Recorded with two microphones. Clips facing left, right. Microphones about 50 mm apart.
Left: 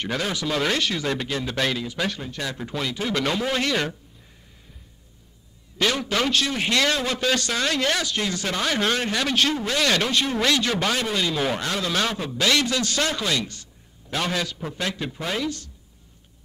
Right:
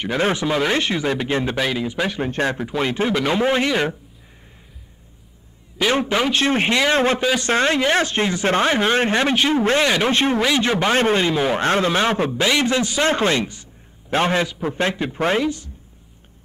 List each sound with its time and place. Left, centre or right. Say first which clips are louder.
0.2 s a man's voice: right 8 dB; right
2.2 s speech: right 9 dB; right
3.1 s a man's voice: right 4 dB; centre
5.9 s a man's voice: right 4 dB; right
6.7 s a man's voice: right 3 dB; right
7.4 s a man's voice: right 6 dB; right
9.6 s speech: right 5 dB; right
10.4 s a man's voice: right 4 dB; right
11.0 s a man's voice: right 7 dB; right
13.0 s speech: right 7 dB; right
15.4 s a man's voice: right 6 dB; centre